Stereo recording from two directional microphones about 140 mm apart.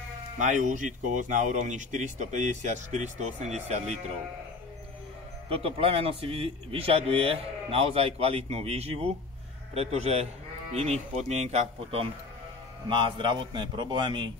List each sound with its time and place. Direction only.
0.4 s speech: 60° right (ahead or behind)
5.5 s speech: 40° right (ahead or behind)
12.8 s a man's voice: 35° right (ahead or behind)